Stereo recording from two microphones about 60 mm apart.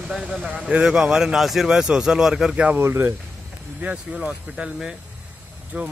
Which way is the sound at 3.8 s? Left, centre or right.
Centre.